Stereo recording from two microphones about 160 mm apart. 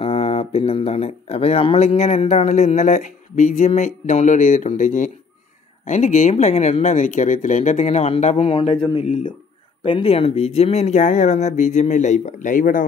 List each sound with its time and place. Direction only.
0.0 s speech: 40° left (ahead or behind); by 12.8 s 55° left (ahead or behind)